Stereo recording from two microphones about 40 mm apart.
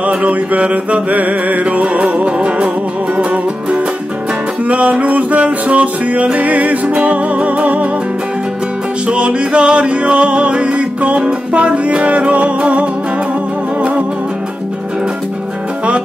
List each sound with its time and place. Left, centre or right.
0.0 s music: right
9.0 s music: right